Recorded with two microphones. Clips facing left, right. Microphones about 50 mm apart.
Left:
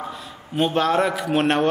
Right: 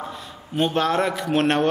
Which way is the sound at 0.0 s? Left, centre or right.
Centre.